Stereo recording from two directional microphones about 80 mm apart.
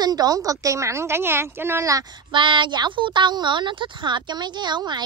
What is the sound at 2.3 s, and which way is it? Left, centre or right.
A woman's voice, right.